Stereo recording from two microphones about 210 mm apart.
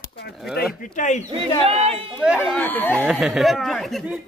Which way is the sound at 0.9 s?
35° left (ahead or behind).